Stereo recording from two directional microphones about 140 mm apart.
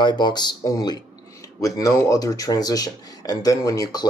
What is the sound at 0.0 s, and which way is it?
Speech, 30° left (ahead or behind).